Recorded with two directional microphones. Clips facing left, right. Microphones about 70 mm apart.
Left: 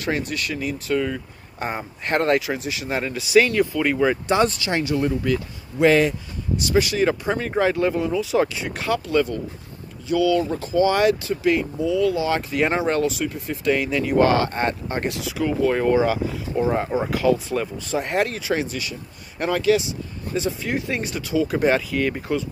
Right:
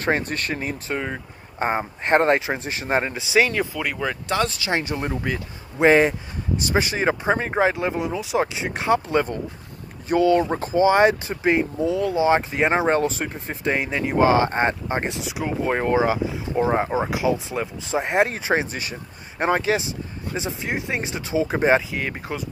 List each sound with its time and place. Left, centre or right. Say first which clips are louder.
0.0 s speech: right 2 dB; right
3.3 s speech: left 3 dB; centre
3.7 s speech: left 6 dB; centre
4.0 s speech: left 4 dB; centre
4.8 s speech: left 4 dB; right
10.8 s speech: right 2 dB; right